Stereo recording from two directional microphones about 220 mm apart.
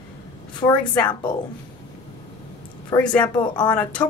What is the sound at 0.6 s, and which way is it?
Speech, 30° left (ahead or behind).